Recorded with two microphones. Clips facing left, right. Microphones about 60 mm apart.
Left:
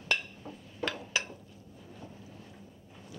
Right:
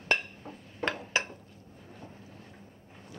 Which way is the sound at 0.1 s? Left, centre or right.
Right.